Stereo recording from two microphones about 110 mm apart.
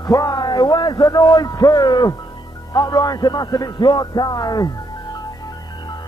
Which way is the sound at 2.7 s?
35° left (ahead or behind).